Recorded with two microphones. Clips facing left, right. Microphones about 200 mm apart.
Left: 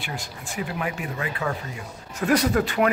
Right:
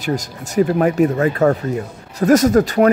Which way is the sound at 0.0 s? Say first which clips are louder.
Right 12 dB; 40° right (ahead or behind).